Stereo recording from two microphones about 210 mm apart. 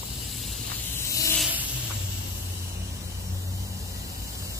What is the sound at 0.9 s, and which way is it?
Vehicle, 15° left (ahead or behind).